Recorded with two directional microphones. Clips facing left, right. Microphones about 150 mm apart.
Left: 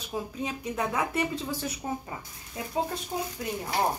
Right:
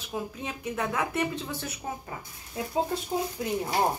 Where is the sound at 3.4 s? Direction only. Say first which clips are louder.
Right 3 dB; 20° right (ahead or behind).